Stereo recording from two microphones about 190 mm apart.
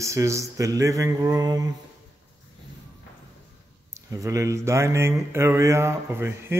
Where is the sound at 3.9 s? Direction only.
15° right (ahead or behind).